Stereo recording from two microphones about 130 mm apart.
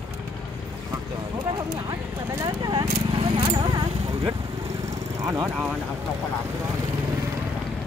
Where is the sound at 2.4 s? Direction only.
30° right (ahead or behind).